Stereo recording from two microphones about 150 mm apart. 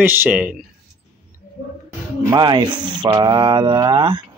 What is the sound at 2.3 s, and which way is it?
Speech, 30° right (ahead or behind).